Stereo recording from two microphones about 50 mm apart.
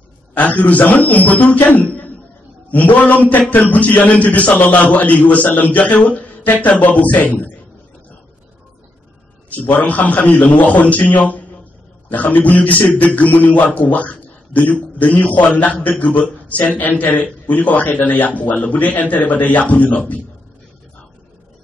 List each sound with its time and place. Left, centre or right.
0.3 s a man's voice: left
9.5 s a man's voice: left
13.7 s a sound: left
14.7 s a man's voice: left